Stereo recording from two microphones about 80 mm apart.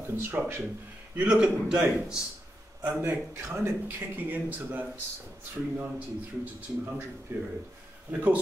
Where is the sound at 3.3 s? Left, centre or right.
Right.